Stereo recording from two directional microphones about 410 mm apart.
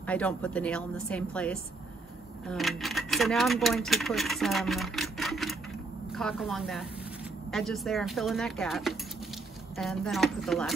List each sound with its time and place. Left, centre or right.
0.0 s a woman's voice: centre